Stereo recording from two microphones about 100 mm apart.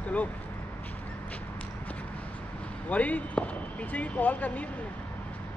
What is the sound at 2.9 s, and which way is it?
Speech, 15° left (ahead or behind).